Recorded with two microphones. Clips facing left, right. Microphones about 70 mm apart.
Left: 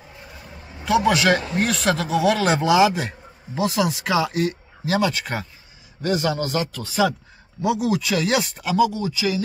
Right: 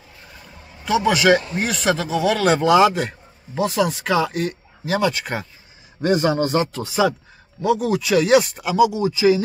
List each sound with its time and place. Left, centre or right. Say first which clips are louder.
0.8 s a man's voice: right 1 dB; centre
6.0 s speech: right 4 dB; right
6.9 s a man's voice: right 1 dB; centre
7.6 s a man's voice: right 2 dB; centre
9.0 s a man's voice: right 7 dB; right